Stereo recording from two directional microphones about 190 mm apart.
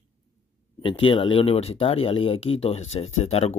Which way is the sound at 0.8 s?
30° left (ahead or behind).